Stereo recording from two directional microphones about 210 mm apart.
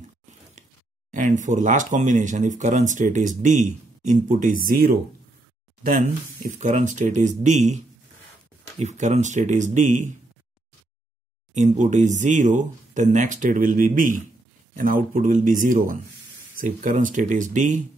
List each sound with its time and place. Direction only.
1.1 s speech: 35° right (ahead or behind)
11.5 s speech: 35° right (ahead or behind)